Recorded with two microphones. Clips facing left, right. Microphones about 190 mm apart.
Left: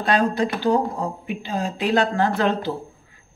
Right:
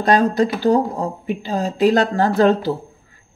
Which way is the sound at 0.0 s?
40° right (ahead or behind).